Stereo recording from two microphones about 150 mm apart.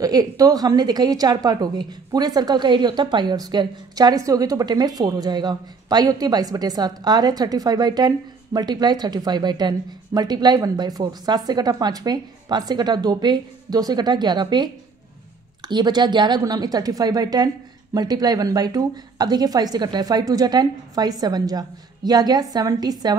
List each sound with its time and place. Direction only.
0.0 s a woman's voice: 25° right (ahead or behind)
15.7 s a woman's voice: 30° right (ahead or behind)